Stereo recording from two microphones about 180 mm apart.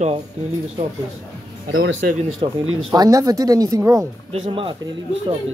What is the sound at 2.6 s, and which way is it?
Speech, 25° right (ahead or behind).